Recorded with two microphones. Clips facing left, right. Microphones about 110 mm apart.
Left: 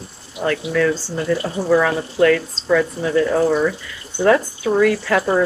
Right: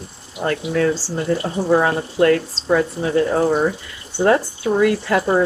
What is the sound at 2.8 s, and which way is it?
Speech, 30° right (ahead or behind).